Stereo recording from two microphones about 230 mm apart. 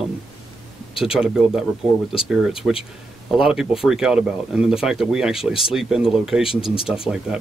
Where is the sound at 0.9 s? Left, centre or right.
Centre.